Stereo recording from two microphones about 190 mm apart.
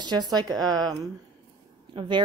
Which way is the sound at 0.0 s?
20° right (ahead or behind).